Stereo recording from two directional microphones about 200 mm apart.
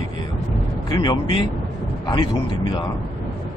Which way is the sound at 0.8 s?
20° left (ahead or behind).